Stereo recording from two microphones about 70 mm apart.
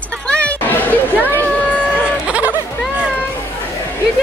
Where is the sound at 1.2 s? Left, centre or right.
Left.